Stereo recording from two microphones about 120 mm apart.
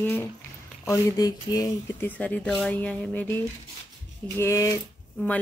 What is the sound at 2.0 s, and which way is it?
Speech, 15° left (ahead or behind).